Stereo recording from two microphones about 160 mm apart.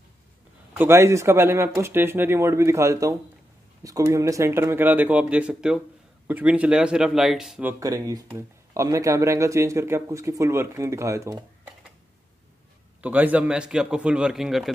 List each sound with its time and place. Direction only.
0.7 s speech: 15° right (ahead or behind)
7.8 s speech: 20° right (ahead or behind)
13.0 s a man's voice: 10° right (ahead or behind)